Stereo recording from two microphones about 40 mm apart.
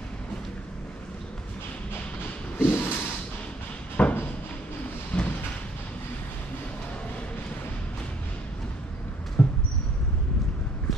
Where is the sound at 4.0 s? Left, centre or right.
Left.